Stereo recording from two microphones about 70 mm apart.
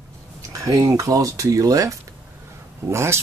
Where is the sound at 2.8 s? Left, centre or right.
Right.